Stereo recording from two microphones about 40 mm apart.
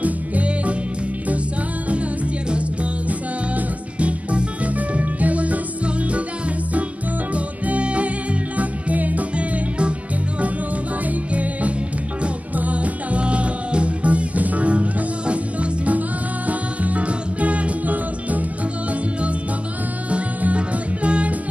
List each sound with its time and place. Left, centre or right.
0.0 s music: right
2.5 s music: right
7.3 s music: right
11.1 s music: right
20.1 s music: right